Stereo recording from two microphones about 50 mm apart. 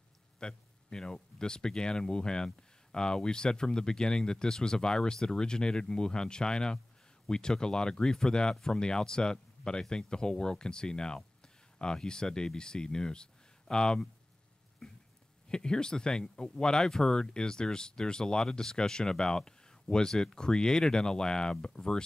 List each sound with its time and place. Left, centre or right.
0.4 s speech: centre
15.4 s speech: centre